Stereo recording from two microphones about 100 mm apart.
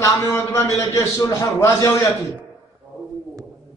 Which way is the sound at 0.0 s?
30° left (ahead or behind).